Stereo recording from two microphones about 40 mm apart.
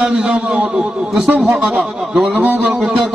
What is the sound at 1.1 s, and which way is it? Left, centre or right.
A man's voice, centre.